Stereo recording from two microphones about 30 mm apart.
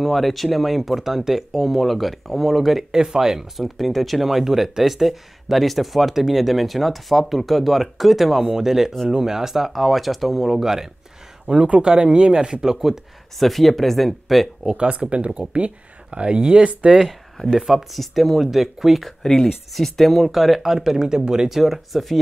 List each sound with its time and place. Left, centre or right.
0.0 s speech: centre
3.0 s speech: centre
9.7 s speech: centre
11.5 s speech: right
12.6 s speech: centre
13.4 s speech: centre
14.8 s speech: right
17.5 s speech: centre
17.9 s speech: centre
19.2 s speech: centre; by 21.5 s right
21.5 s speech: centre